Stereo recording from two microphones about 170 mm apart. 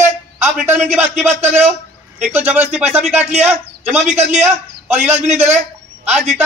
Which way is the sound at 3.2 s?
40° right (ahead or behind).